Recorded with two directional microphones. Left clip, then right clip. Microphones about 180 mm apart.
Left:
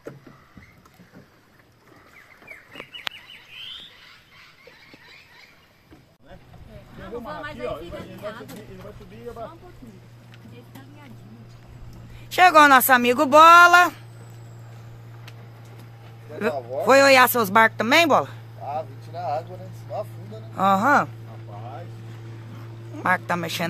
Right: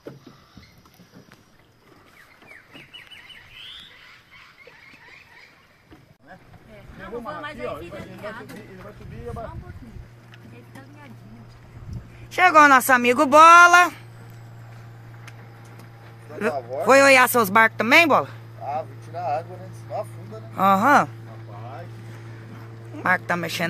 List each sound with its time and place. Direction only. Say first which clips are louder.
12.3 s speech: even; 10° left (ahead or behind); by 14.0 s 15° right (ahead or behind)
16.8 s speech: even; 10° right (ahead or behind)
18.7 s a sound: right 1 dB; 10° left (ahead or behind)
19.9 s music: right 1 dB; 10° left (ahead or behind)
20.5 s speech: right 2 dB; 10° right (ahead or behind)
22.9 s speech: right 1 dB; centre (ahead or behind)